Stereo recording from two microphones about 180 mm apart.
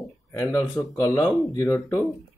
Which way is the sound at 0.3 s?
15° left (ahead or behind).